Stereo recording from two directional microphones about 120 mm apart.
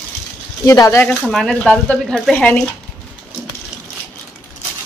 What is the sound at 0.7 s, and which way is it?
Speech, 25° left (ahead or behind).